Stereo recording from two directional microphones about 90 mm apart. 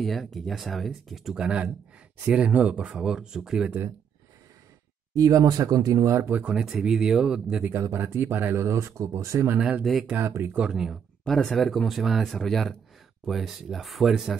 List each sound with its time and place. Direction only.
0.0 s speech: centre (ahead or behind)
5.1 s speech: 40° right (ahead or behind)
6.2 s speech: 20° right (ahead or behind)
6.5 s speech: 10° right (ahead or behind)
7.7 s speech: 25° right (ahead or behind)
9.6 s speech: 10° right (ahead or behind)
10.0 s speech: 25° right (ahead or behind)
10.5 s speech: 10° right (ahead or behind)